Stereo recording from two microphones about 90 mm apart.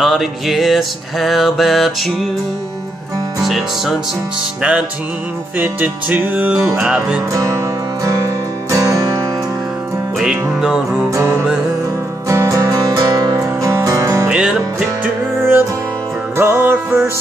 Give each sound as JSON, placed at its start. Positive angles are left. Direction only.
{"t": 0.0, "sound": "music", "side_deg": -5}
{"t": 3.4, "sound": "music", "side_deg": 0}
{"t": 5.6, "sound": "music", "side_deg": -20}
{"t": 7.3, "sound": "music", "side_deg": -35}
{"t": 10.1, "sound": "music", "side_deg": -10}
{"t": 11.1, "sound": "music", "side_deg": -30}
{"t": 14.3, "sound": "music", "side_deg": -10}
{"t": 15.3, "sound": "music", "side_deg": -25}